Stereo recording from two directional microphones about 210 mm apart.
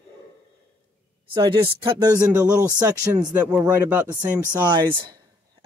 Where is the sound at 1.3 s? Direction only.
20° right (ahead or behind).